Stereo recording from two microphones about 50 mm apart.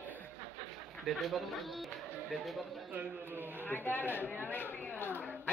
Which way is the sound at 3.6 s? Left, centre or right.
Left.